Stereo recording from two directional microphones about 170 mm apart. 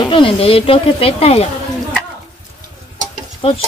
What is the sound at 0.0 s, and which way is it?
Speech, 30° left (ahead or behind).